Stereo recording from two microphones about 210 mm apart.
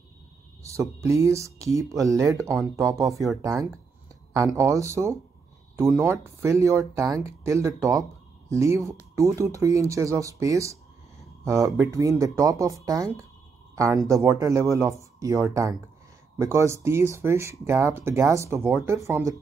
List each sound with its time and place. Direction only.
0.7 s speech: 15° right (ahead or behind)
3.1 s speech: centre (ahead or behind)
4.3 s speech: 15° right (ahead or behind)
11.6 s speech: centre (ahead or behind)
11.9 s speech: 15° right (ahead or behind)